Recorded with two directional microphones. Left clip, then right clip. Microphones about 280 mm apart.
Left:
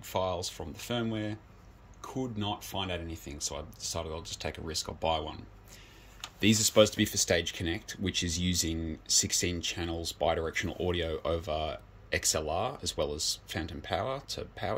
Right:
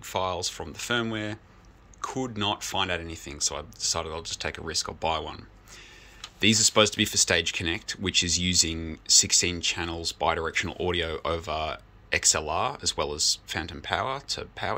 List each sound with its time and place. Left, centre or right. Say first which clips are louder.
0.0 s speech: right 4 dB; centre
6.4 s speech: right 3 dB; centre